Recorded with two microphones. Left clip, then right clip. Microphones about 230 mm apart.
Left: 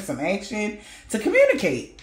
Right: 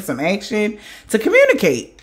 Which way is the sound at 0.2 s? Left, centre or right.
Right.